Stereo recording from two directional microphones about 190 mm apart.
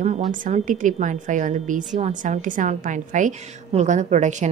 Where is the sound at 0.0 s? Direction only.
40° right (ahead or behind).